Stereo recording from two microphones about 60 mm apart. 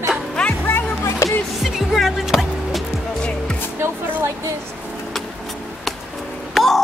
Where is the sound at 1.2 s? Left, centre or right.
Left.